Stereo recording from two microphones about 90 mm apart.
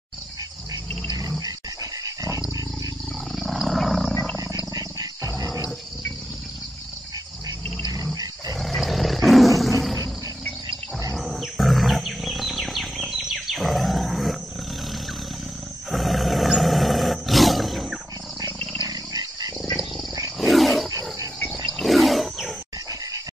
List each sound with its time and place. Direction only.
1.4 s dog: 40° right (ahead or behind)
3.3 s wild animals: centre (ahead or behind)
4.7 s wild animals: 40° right (ahead or behind)
7.9 s roar: 40° right (ahead or behind)
8.5 s roar: centre (ahead or behind)
11.1 s wild animals: centre (ahead or behind)
15.9 s roar: centre (ahead or behind)
18.8 s dog: 45° right (ahead or behind)
20.3 s wild animals: centre (ahead or behind)